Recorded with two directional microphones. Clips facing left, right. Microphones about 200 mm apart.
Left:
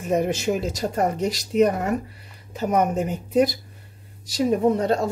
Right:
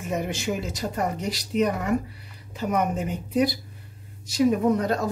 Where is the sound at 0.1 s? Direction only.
40° left (ahead or behind).